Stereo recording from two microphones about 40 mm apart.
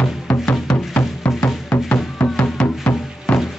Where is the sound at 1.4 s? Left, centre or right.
Left.